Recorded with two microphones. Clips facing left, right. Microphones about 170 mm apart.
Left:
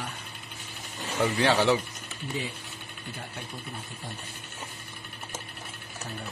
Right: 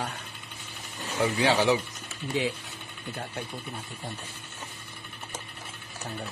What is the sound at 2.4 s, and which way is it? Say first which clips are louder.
Speech: right 7 dB; 90° right.